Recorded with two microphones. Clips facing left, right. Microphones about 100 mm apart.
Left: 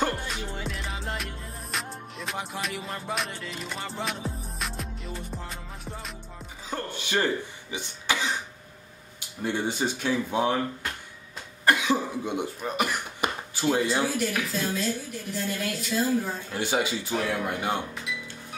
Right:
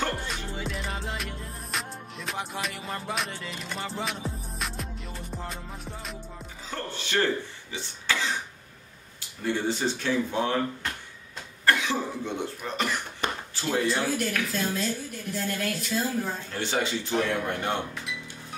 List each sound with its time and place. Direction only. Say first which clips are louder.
0.1 s music: even; centre (ahead or behind)
6.7 s speech: left 1 dB; 15° left (ahead or behind)
7.7 s cough: left 1 dB; 15° left (ahead or behind)
9.4 s speech: even; 15° left (ahead or behind)
11.6 s cough: left 2 dB; 15° left (ahead or behind)
12.6 s throat clearing: left 1 dB; 10° left (ahead or behind)
13.9 s speech: left 1 dB; centre (ahead or behind)